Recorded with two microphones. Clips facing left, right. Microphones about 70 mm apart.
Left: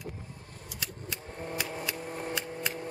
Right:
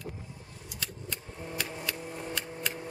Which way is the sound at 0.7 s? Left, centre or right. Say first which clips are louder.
Even; centre.